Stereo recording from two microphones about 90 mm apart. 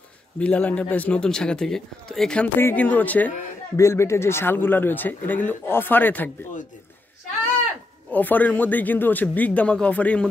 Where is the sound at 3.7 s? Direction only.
35° left (ahead or behind).